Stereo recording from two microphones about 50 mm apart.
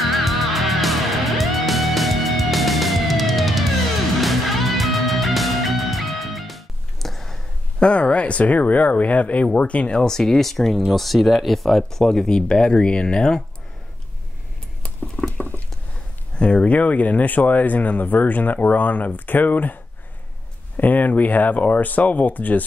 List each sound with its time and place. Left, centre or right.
0.0 s music: centre
7.8 s speech: left
15.3 s patter: left
16.3 s speech: left